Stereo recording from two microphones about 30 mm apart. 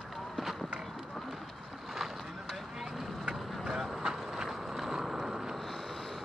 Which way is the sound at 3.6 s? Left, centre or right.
Centre.